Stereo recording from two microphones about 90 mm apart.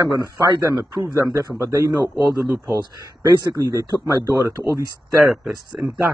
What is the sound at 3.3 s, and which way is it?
Speech, 50° right (ahead or behind).